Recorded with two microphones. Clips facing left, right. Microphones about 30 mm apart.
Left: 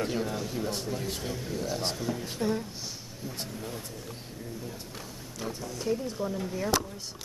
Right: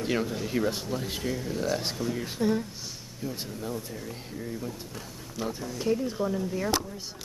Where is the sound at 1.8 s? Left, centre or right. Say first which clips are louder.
Right 1 dB; centre.